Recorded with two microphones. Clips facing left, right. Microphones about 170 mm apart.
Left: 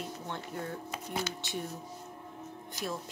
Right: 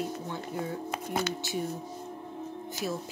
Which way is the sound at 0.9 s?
55° right (ahead or behind).